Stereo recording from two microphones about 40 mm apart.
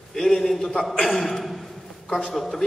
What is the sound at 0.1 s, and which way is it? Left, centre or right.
A man's voice, centre.